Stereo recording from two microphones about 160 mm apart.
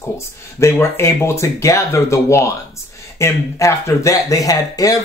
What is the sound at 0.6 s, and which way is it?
Speech, 15° left (ahead or behind).